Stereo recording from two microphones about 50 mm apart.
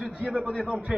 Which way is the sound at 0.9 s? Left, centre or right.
Centre.